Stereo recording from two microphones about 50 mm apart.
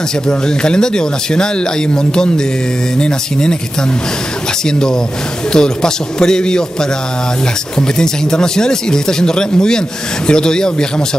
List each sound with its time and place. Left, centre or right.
0.3 s speech: centre
4.6 s speech: centre